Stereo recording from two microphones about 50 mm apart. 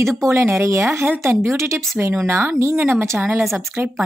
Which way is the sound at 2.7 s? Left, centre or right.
Right.